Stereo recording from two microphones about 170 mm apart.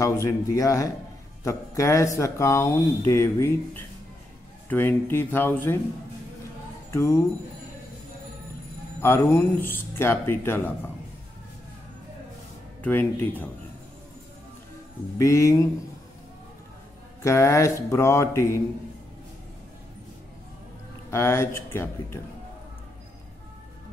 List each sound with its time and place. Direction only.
0.0 s speech: 20° left (ahead or behind)
6.9 s speech: 15° left (ahead or behind)
9.0 s speech: 15° left (ahead or behind)
12.8 s speech: 10° left (ahead or behind)
15.1 s speech: 20° left (ahead or behind)
17.2 s speech: 15° left (ahead or behind)
21.1 s speech: 15° left (ahead or behind)